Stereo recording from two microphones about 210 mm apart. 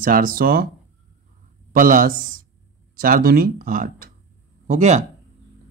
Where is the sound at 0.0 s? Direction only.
40° right (ahead or behind).